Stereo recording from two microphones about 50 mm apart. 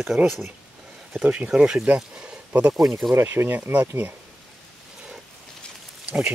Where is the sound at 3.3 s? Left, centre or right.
Right.